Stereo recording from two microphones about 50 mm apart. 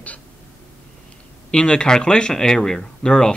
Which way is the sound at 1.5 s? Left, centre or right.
Centre.